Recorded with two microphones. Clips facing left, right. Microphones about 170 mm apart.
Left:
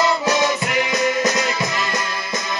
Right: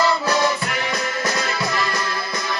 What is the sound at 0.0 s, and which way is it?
Music, 20° left (ahead or behind).